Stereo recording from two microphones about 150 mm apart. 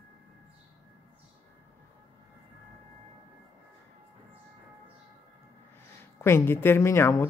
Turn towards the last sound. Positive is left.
turn(degrees=15)  # may be behind; listen again after turning